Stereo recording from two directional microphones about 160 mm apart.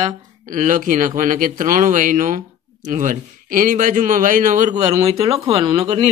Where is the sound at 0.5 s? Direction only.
55° right (ahead or behind).